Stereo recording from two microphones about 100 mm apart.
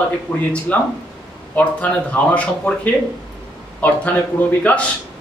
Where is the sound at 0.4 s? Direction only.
15° left (ahead or behind).